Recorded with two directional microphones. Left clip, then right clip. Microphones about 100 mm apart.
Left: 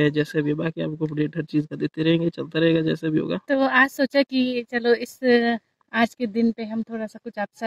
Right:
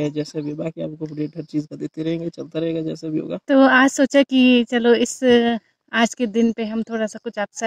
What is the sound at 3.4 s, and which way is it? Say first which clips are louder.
A woman's voice: right 6 dB; 25° right (ahead or behind).